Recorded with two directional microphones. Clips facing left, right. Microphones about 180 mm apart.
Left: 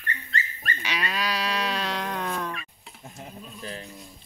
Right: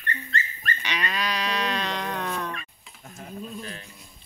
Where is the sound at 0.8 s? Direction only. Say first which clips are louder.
Even; 5° left (ahead or behind).